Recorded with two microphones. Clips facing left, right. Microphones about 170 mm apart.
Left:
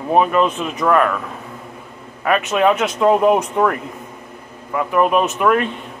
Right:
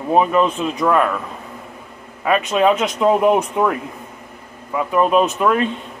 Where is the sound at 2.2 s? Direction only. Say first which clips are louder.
Even; 15° right (ahead or behind).